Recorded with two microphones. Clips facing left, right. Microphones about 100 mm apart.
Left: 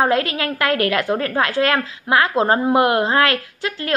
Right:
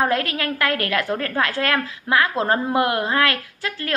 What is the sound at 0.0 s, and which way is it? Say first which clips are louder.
A woman's voice: left 3 dB; 20° left (ahead or behind).